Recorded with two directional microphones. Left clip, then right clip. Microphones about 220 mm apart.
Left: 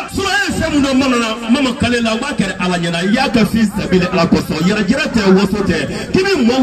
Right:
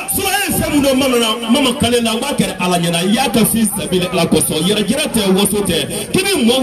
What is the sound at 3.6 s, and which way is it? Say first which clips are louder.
Speech: left 2 dB; 35° right (ahead or behind).